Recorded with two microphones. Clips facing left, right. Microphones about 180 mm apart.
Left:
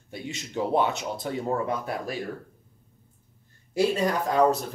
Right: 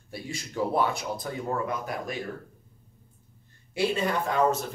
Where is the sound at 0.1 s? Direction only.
25° left (ahead or behind).